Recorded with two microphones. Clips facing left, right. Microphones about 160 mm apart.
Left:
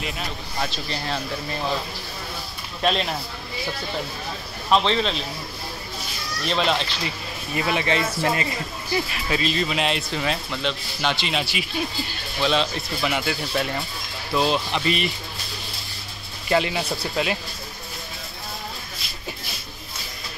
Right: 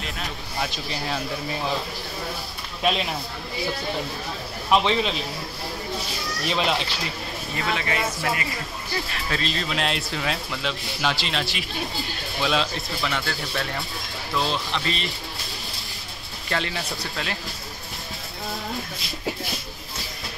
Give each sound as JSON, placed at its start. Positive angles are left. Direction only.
{"t": 0.0, "sound": "speech", "side_deg": 0}
{"t": 2.8, "sound": "speech", "side_deg": -5}
{"t": 4.6, "sound": "speech", "side_deg": -10}
{"t": 6.4, "sound": "speech", "side_deg": -5}
{"t": 7.5, "sound": "speech", "side_deg": 20}
{"t": 8.9, "sound": "speech", "side_deg": 5}
{"t": 13.0, "sound": "speech", "side_deg": 15}
{"t": 14.3, "sound": "speech", "side_deg": 15}
{"t": 16.4, "sound": "speech", "side_deg": 15}